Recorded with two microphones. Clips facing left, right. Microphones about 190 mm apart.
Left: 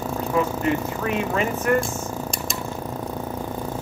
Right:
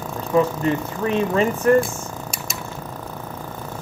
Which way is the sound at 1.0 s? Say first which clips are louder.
Right 8 dB; 30° right (ahead or behind).